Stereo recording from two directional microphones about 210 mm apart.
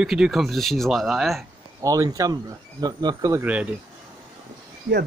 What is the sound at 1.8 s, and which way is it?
Speech, 15° right (ahead or behind).